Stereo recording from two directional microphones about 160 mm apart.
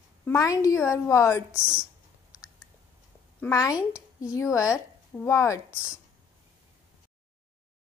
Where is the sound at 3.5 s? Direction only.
20° left (ahead or behind).